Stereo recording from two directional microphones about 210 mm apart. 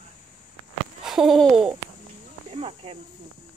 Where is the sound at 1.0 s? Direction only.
Centre (ahead or behind).